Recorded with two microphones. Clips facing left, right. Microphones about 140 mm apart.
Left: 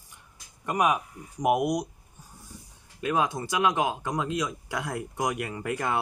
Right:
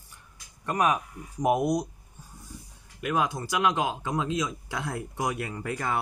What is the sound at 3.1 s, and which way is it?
Speech, 20° left (ahead or behind).